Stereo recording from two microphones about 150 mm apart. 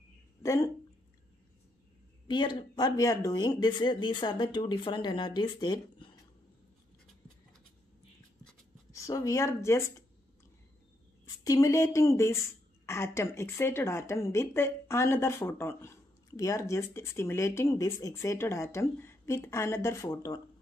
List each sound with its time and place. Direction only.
0.4 s a sound: 20° left (ahead or behind)
2.2 s speech: 30° left (ahead or behind)
8.9 s speech: 20° left (ahead or behind)
11.4 s a woman's voice: 20° left (ahead or behind)